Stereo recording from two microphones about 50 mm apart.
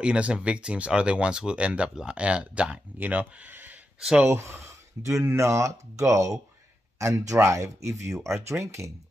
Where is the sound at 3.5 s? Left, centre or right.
Right.